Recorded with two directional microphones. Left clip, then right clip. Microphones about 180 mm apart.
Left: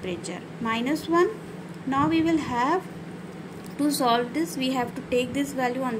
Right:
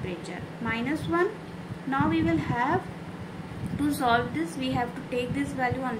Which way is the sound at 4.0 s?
35° left (ahead or behind).